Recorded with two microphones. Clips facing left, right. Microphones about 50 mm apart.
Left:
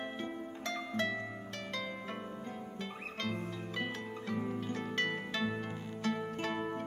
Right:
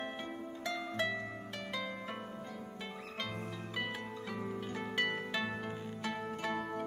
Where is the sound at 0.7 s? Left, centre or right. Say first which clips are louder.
Even; centre.